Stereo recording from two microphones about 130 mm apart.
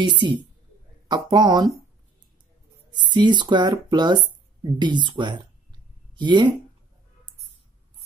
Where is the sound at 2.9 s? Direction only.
35° right (ahead or behind).